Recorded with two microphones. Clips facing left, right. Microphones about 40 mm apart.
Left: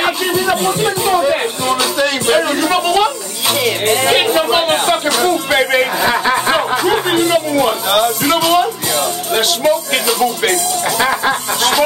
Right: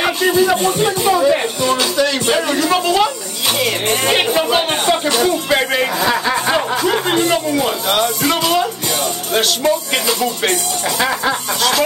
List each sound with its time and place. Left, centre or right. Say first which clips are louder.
0.0 s music: right 1 dB; centre
0.7 s speech: even; centre
3.5 s music: left 4 dB; centre